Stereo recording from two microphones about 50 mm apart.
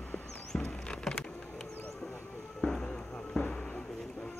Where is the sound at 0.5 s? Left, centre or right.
Centre.